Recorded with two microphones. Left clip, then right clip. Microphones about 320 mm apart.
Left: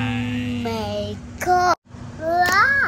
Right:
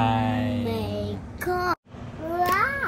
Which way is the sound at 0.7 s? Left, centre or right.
Centre.